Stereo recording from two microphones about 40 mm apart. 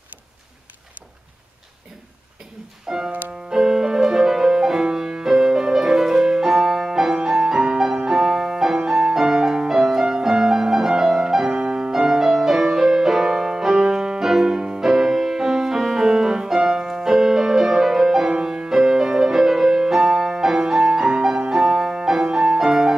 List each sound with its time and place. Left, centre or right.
2.9 s music: centre
18.3 s music: centre